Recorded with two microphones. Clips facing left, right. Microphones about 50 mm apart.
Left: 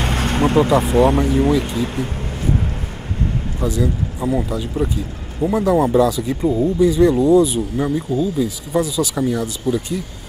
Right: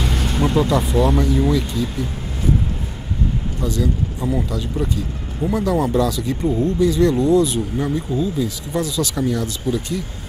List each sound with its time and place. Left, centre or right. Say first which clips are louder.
0.0 s vehicle: left 3 dB; left
0.6 s speech: left 4 dB; left
0.8 s speech: left 4 dB; left
1.1 s speech: left 2 dB; left
3.6 s speech: left 2 dB; centre